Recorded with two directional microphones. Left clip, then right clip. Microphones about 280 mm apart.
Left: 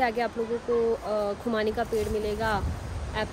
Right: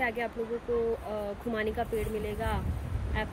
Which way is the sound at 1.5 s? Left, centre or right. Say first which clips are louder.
Left 1 dB; centre.